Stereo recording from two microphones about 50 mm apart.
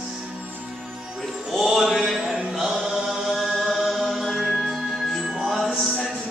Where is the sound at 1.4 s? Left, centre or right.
Centre.